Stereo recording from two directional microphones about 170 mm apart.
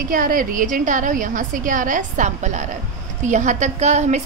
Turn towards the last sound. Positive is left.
turn(degrees=-45)  # may be behind; listen again after turning